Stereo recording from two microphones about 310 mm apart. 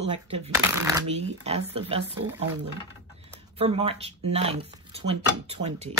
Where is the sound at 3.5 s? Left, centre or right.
Centre.